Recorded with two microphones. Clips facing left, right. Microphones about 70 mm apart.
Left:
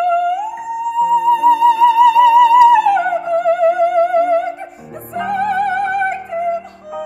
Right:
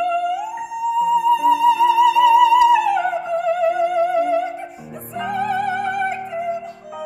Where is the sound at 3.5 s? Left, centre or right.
Left.